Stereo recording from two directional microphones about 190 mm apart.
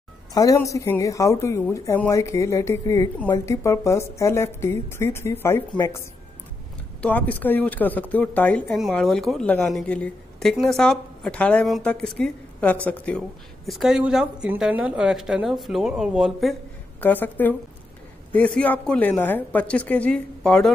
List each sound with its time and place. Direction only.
0.3 s a woman's voice: 15° left (ahead or behind); by 16.5 s centre (ahead or behind)
17.0 s a woman's voice: 10° left (ahead or behind)